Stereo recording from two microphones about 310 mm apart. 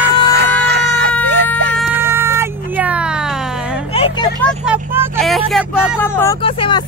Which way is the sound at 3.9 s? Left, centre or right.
Centre.